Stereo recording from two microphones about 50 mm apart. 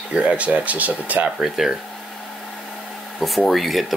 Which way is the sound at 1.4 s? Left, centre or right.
Centre.